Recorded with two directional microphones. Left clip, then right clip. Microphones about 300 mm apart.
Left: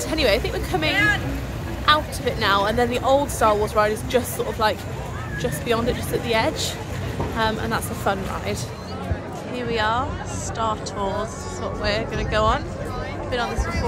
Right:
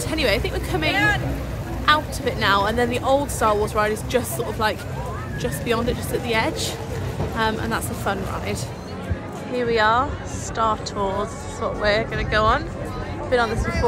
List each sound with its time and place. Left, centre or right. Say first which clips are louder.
0.1 s speech: left 1 dB; centre
0.9 s speech: even; right
1.9 s speech: even; centre
9.5 s speech: right 4 dB; centre